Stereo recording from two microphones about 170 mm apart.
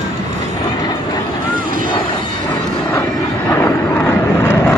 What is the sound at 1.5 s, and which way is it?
Vehicle, 55° right (ahead or behind).